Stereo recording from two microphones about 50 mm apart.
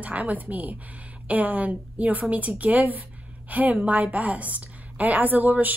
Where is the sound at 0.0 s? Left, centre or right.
Right.